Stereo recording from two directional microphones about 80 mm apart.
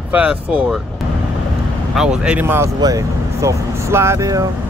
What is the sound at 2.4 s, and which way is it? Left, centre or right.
Speech, right.